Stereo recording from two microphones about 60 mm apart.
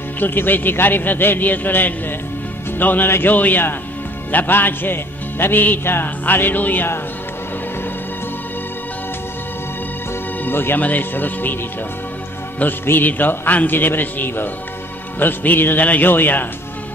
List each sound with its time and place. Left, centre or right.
0.2 s a man's voice: left
10.4 s a man's voice: left
12.8 s a man's voice: left